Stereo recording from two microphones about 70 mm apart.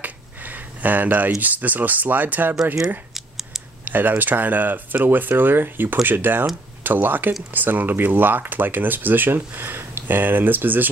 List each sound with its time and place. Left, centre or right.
0.0 s a sound: right
1.4 s speech: right
3.2 s scissors: centre
3.8 s speech: right